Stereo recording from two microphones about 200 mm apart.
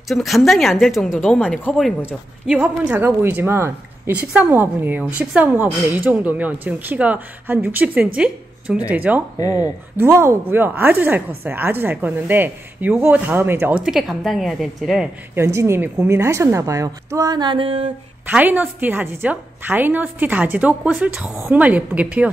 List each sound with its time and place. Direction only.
0.1 s speech: centre (ahead or behind)
9.4 s speech: 20° left (ahead or behind)
9.9 s speech: 15° right (ahead or behind)
15.3 s speech: 15° right (ahead or behind)
18.2 s speech: 10° right (ahead or behind)